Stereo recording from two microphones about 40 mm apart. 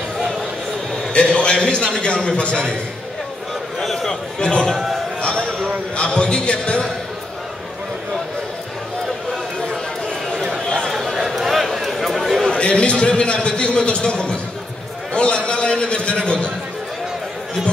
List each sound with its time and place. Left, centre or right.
1.1 s a man's voice: left
3.8 s a sound: centre
4.4 s a man's voice: left
5.9 s speech: left
10.9 s a sound: centre
12.4 s a man's voice: left